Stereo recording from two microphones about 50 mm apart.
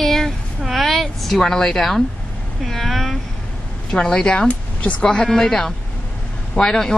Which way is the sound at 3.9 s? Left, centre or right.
Centre.